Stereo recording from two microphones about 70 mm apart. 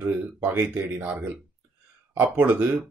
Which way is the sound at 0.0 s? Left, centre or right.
Right.